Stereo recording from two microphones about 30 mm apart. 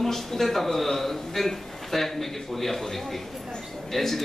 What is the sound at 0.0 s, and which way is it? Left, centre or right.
A man's voice, centre.